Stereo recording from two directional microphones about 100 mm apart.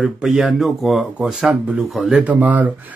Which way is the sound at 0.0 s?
5° right (ahead or behind).